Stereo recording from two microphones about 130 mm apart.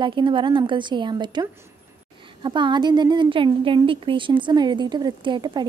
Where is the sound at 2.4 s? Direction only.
35° right (ahead or behind).